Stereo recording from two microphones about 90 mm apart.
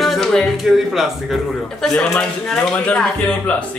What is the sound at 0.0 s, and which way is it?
Speech, centre (ahead or behind).